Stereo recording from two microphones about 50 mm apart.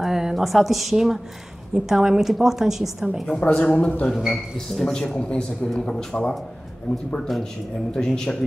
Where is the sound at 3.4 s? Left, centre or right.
Left.